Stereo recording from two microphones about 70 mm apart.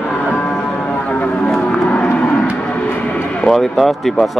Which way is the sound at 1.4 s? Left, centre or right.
Centre.